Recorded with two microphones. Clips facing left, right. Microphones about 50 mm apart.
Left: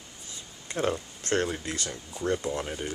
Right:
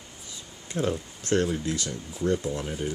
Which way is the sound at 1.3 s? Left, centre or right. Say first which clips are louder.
Right 3 dB; left.